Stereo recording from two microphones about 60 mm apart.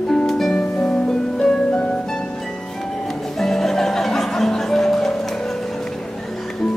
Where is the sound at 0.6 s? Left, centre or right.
Left.